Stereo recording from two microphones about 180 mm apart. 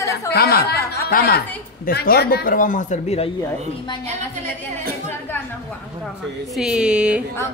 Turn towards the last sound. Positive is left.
turn(degrees=-5)  # may be behind; listen again after turning